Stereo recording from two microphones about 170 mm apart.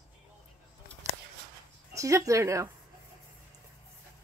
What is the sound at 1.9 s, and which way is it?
Speech, 20° right (ahead or behind).